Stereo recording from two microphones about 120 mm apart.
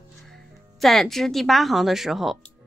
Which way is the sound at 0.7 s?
Centre (ahead or behind).